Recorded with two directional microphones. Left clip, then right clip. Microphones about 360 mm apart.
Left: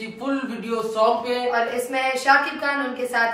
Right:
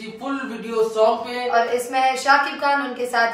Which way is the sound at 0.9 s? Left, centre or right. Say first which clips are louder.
Left 2 dB; centre.